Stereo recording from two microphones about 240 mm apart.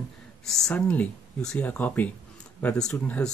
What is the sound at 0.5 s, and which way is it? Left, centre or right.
Speech, centre.